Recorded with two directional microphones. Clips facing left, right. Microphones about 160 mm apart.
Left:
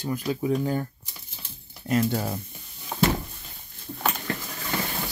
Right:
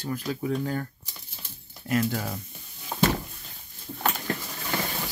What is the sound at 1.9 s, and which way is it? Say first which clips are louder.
Speech: left 2 dB; 25° left (ahead or behind).